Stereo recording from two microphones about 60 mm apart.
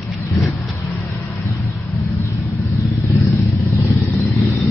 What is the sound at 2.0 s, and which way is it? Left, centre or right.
Vehicle, left.